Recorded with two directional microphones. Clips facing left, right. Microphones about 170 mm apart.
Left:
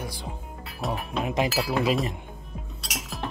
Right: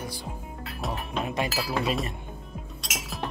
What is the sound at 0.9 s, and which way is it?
Speech, 15° left (ahead or behind).